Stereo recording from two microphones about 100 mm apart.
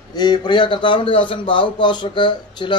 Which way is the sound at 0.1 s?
45° left (ahead or behind).